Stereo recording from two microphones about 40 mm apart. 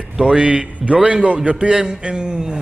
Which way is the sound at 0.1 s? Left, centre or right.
Right.